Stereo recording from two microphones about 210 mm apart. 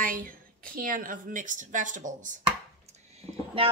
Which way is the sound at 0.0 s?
40° right (ahead or behind).